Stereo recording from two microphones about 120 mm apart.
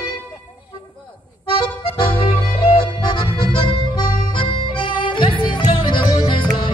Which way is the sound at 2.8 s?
40° left (ahead or behind).